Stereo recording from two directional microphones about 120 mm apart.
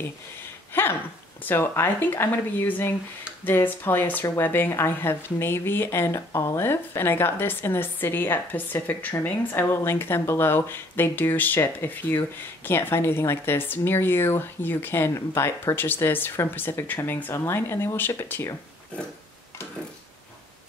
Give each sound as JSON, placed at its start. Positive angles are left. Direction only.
{"t": 0.7, "sound": "speech", "side_deg": 15}